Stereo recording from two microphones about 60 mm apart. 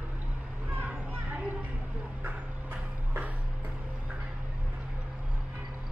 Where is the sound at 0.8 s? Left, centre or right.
Right.